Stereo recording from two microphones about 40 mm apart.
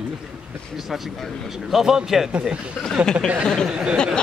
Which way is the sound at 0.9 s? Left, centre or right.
Centre.